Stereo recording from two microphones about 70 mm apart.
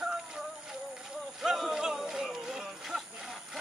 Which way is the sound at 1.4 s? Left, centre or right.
Centre.